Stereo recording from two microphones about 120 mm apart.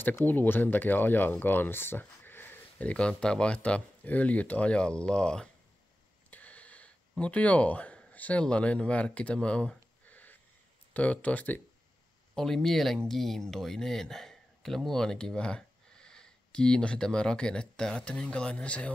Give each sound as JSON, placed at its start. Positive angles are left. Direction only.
{"t": 0.0, "sound": "speech", "side_deg": 15}
{"t": 6.3, "sound": "a sound", "side_deg": 10}
{"t": 10.9, "sound": "speech", "side_deg": 10}
{"t": 12.4, "sound": "speech", "side_deg": 5}